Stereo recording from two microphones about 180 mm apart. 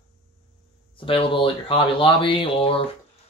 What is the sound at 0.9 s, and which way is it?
Speech, 30° left (ahead or behind).